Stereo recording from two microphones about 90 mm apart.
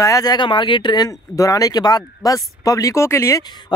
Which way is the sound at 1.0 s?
40° left (ahead or behind).